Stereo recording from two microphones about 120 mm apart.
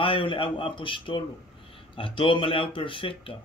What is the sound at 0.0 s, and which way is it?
Speech, 45° left (ahead or behind).